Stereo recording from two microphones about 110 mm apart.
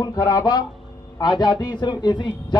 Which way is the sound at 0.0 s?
35° left (ahead or behind).